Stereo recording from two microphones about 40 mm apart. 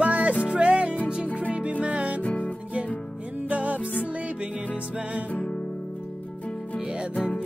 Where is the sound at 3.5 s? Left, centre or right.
Right.